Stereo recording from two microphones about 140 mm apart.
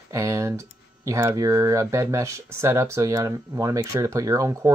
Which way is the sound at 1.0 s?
20° right (ahead or behind).